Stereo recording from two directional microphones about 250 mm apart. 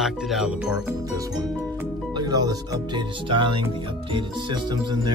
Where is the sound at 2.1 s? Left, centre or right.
Centre.